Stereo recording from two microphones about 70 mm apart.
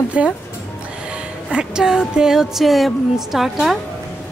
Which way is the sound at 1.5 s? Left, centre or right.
Centre.